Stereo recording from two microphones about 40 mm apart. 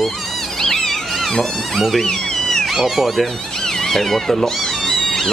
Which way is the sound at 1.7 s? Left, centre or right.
Centre.